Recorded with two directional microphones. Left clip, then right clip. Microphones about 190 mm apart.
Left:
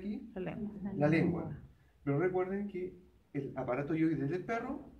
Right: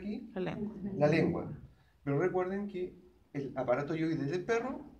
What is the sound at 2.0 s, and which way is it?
A man's voice, 5° right (ahead or behind).